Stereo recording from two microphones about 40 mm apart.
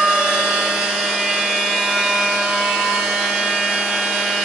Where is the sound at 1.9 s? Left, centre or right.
Centre.